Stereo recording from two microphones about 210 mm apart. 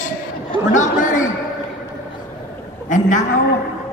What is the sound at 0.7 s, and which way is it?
Speech, 35° left (ahead or behind).